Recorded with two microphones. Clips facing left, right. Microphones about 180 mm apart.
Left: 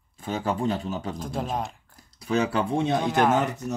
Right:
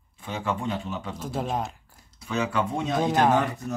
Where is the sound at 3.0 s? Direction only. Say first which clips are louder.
Right 3 dB; 25° right (ahead or behind).